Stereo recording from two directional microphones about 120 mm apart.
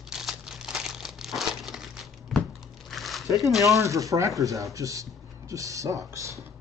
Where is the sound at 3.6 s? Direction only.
25° right (ahead or behind).